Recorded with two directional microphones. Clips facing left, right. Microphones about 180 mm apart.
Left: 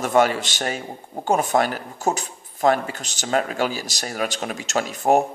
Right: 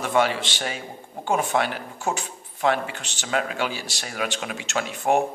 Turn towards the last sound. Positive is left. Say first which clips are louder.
# left 3 dB
turn(degrees=40)  # may be behind; listen again after turning